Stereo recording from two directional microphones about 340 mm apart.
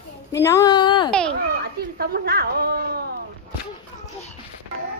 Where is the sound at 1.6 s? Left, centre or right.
Right.